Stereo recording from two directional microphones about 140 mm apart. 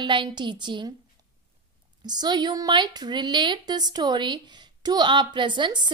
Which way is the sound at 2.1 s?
30° right (ahead or behind).